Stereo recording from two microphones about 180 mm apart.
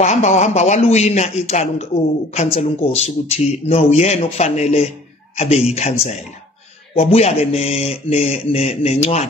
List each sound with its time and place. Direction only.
0.0 s speech: 40° left (ahead or behind)